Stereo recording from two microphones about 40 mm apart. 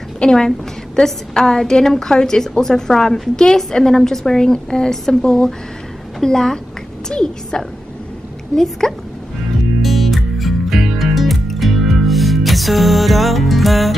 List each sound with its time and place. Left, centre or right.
0.2 s a woman's voice: centre
8.8 s speech: centre
9.8 s music: centre